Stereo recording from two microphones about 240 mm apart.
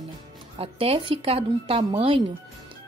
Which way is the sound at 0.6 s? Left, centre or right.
Right.